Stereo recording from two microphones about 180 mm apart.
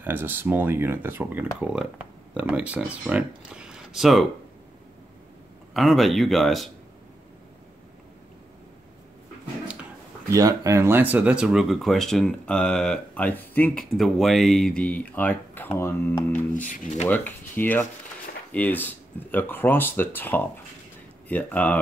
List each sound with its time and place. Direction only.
0.0 s speech: 10° right (ahead or behind)
5.7 s speech: centre (ahead or behind)
10.3 s speech: 20° right (ahead or behind); by 16.6 s 10° left (ahead or behind)
16.6 s speech: 45° left (ahead or behind)
17.1 s speech: 10° left (ahead or behind)